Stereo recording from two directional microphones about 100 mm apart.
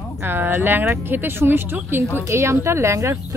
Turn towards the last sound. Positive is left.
turn(degrees=-30)  # may be behind; listen again after turning